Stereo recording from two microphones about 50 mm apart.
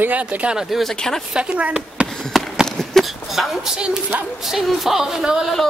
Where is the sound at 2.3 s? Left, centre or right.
Centre.